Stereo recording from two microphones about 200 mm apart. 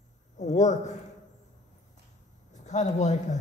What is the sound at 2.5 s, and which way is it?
Speech, 35° left (ahead or behind).